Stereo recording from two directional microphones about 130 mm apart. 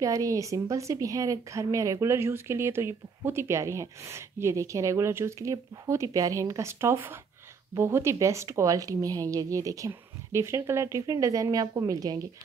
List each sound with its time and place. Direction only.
0.0 s speech: 25° right (ahead or behind)